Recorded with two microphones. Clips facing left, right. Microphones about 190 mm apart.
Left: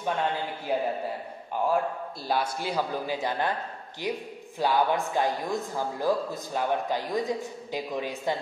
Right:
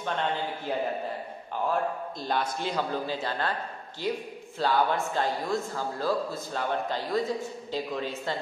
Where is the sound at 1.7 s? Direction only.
10° left (ahead or behind).